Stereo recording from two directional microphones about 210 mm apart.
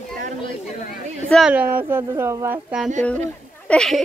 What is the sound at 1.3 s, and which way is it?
Speech, 5° right (ahead or behind).